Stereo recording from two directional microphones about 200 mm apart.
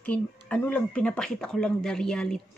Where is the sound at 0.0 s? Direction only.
5° left (ahead or behind).